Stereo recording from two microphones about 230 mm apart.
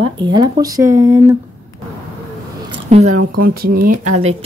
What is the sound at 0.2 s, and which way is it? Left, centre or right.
Speech, centre.